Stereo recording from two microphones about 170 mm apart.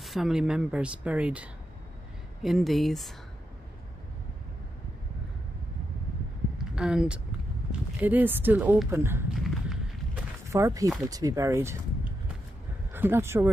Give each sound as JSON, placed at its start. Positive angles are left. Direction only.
{"t": 0.0, "sound": "speech", "side_deg": 0}
{"t": 6.7, "sound": "speech", "side_deg": -5}
{"t": 10.5, "sound": "speech", "side_deg": -20}